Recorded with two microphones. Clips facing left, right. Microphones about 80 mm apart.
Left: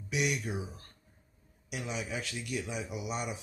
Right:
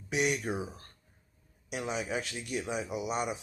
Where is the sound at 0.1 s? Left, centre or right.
Right.